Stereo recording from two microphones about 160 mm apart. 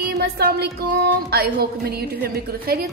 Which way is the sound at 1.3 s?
75° right (ahead or behind).